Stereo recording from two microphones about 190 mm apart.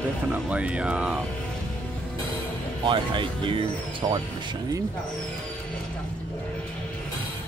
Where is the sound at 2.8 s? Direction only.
25° right (ahead or behind).